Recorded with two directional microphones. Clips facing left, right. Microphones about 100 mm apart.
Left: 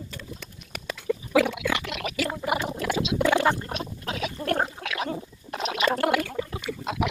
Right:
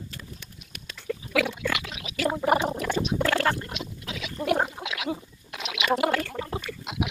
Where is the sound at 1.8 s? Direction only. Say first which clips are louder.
Left 8 dB; 70° left (ahead or behind).